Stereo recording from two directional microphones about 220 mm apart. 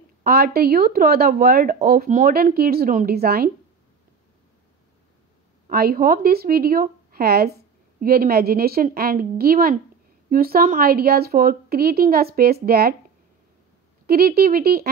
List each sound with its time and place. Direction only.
0.2 s speech: 45° right (ahead or behind)
5.7 s speech: 45° right (ahead or behind)
14.0 s speech: 45° right (ahead or behind)